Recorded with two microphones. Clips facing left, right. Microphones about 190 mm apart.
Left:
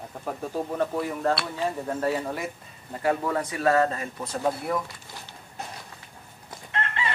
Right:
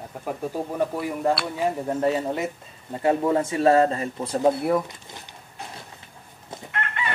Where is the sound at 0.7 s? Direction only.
10° right (ahead or behind); by 4.8 s 30° right (ahead or behind).